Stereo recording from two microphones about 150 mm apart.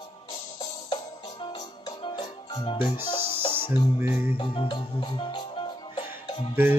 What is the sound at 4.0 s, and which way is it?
Mantra, 15° right (ahead or behind).